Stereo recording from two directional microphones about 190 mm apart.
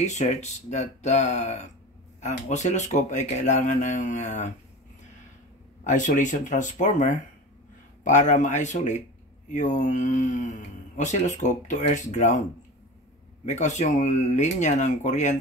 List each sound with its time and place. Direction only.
0.0 s speech: 40° left (ahead or behind)
5.9 s speech: 40° left (ahead or behind)
13.5 s speech: 40° left (ahead or behind)